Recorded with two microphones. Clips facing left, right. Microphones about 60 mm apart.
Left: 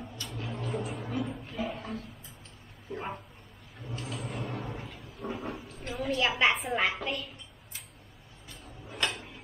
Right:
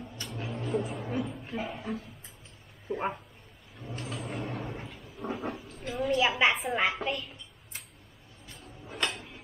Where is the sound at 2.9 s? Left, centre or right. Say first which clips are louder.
Right 5 dB; right.